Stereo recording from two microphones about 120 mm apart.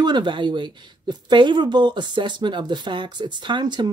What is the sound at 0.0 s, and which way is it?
Speech, 40° right (ahead or behind).